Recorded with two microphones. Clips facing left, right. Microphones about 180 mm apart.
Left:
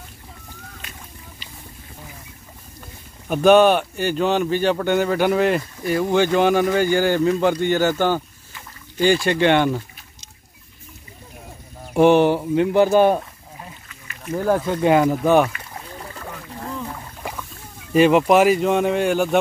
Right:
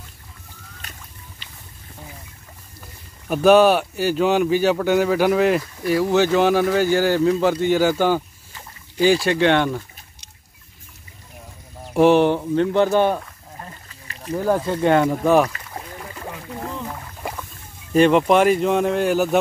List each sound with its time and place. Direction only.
3.3 s speech: centre (ahead or behind)
11.9 s speech: centre (ahead or behind)
13.8 s a sound: 35° right (ahead or behind)
14.3 s speech: centre (ahead or behind)
16.7 s rowboat: 5° right (ahead or behind)
17.9 s speech: 5° left (ahead or behind)